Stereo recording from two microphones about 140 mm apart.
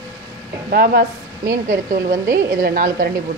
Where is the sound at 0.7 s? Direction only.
90° right; by 2.2 s 65° right (ahead or behind).